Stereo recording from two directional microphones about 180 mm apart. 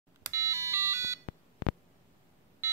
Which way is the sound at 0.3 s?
15° right (ahead or behind).